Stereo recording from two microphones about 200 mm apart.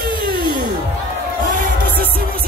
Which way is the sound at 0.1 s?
25° left (ahead or behind).